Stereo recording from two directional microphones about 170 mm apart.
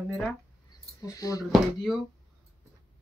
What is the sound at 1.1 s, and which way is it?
Speech, 20° left (ahead or behind).